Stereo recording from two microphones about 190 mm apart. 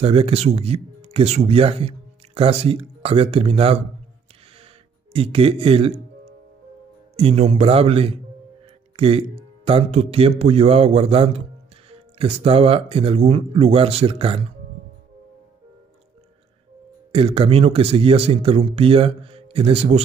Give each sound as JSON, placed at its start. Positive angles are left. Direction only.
{"t": 0.0, "sound": "speech", "side_deg": -30}
{"t": 5.1, "sound": "speech", "side_deg": -30}
{"t": 7.2, "sound": "speech", "side_deg": -30}
{"t": 17.1, "sound": "speech", "side_deg": -30}